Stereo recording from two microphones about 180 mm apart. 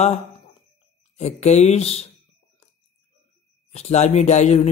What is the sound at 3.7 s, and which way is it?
Speech, 35° left (ahead or behind).